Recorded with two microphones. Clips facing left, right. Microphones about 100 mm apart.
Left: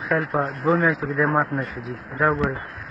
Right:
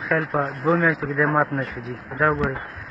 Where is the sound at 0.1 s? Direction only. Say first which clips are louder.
Even; centre (ahead or behind).